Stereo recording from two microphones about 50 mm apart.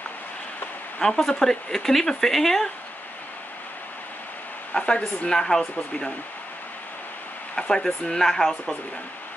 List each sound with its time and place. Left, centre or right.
0.9 s speech: centre
4.7 s speech: left
7.5 s speech: centre